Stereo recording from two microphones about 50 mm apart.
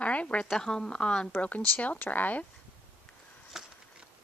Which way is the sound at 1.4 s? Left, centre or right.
Left.